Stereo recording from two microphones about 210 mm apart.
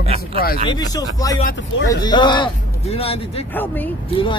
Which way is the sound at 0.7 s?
20° left (ahead or behind).